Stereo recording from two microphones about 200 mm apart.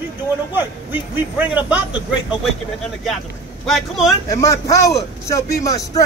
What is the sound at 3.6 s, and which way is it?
Speech, centre (ahead or behind).